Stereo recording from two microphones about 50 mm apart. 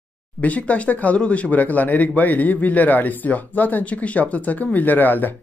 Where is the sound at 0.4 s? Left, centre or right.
Left.